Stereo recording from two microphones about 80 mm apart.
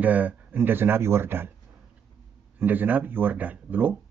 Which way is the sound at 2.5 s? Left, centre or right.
Right.